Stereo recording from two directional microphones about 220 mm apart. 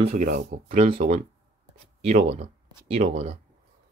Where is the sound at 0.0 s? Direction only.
35° right (ahead or behind).